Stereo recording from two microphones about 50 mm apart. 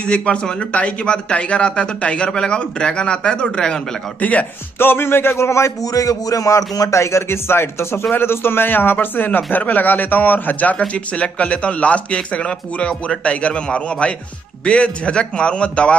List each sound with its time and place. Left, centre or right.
0.1 s a man's voice: left
4.7 s speech: left
6.4 s speech: left
10.8 s a man's voice: left